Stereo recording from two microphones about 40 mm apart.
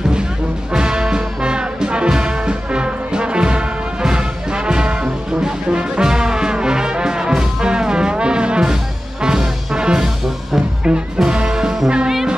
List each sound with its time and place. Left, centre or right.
0.7 s music: centre
10.0 s music: centre
10.8 s music: right